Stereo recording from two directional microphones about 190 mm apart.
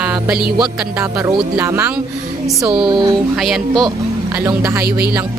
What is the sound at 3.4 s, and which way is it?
A woman's voice, centre (ahead or behind).